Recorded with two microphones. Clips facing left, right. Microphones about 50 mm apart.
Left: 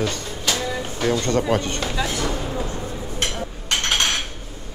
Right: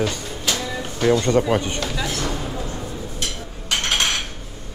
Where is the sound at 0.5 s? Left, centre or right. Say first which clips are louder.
Left 2 dB; centre.